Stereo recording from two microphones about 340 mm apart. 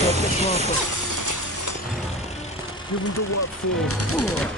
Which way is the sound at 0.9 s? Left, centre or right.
Right.